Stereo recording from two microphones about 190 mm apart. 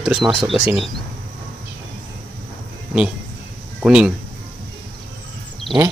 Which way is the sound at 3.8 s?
5° right (ahead or behind).